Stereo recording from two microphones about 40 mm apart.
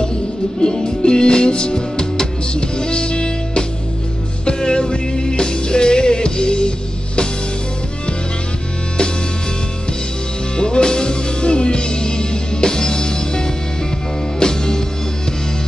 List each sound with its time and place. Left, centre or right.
0.6 s music: left
10.6 s music: left